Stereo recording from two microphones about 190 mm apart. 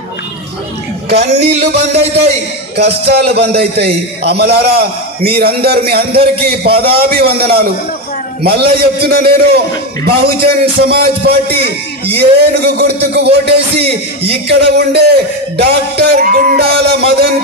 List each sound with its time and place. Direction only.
1.1 s a man's voice: 55° right (ahead or behind)
2.8 s a man's voice: 55° right (ahead or behind)